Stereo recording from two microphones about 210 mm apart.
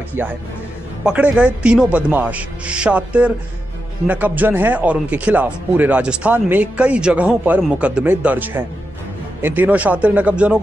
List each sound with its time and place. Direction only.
1.0 s a man's voice: 5° right (ahead or behind)